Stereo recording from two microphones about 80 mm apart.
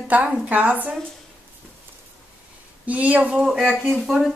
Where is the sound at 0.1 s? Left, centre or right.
Right.